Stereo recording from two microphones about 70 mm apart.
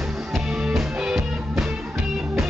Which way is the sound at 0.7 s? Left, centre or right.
Centre.